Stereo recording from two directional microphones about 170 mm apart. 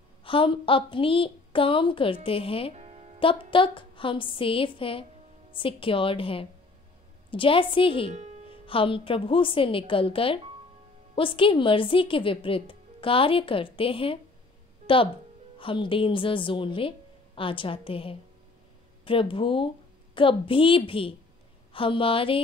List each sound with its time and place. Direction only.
0.2 s a woman's voice: 30° left (ahead or behind)
2.7 s music: 35° right (ahead or behind)
3.2 s a woman's voice: 30° left (ahead or behind)
8.1 s speech: 40° right (ahead or behind)
8.5 s a woman's voice: 30° left (ahead or behind)
15.6 s a woman's voice: 30° left (ahead or behind)